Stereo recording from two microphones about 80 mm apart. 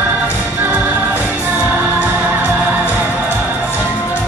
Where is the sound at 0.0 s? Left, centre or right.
Centre.